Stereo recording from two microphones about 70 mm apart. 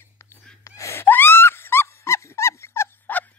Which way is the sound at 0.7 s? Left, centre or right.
Left.